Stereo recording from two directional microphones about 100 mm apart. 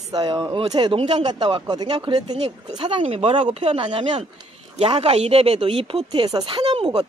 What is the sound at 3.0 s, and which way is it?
Speech, 90° right.